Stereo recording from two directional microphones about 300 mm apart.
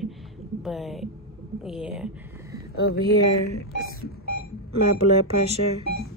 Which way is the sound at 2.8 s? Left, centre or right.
Left.